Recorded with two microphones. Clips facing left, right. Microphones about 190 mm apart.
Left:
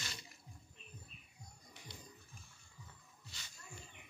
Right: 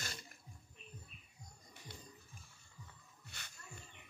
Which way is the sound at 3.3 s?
60° right (ahead or behind).